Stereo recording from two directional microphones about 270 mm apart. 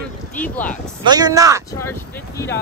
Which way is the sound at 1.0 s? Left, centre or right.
Centre.